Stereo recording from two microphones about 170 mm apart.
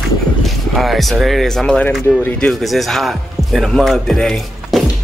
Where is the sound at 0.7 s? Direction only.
Centre (ahead or behind).